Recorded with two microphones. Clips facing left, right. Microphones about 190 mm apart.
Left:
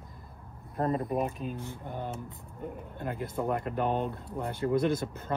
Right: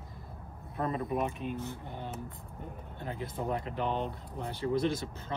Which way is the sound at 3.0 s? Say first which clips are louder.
Left 4 dB; 50° left (ahead or behind).